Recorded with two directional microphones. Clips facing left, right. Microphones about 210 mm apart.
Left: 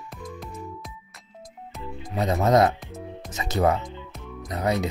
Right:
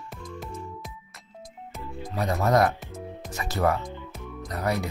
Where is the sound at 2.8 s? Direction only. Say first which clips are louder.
Left 1 dB; centre (ahead or behind).